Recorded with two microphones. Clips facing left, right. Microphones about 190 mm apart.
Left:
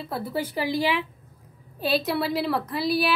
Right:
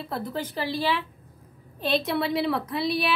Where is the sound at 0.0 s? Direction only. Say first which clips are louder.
Left 2 dB; 5° left (ahead or behind).